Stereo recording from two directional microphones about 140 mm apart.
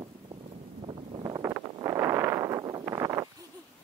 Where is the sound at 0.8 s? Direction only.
40° right (ahead or behind).